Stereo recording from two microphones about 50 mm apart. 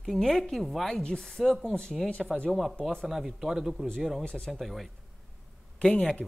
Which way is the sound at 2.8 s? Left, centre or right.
Centre.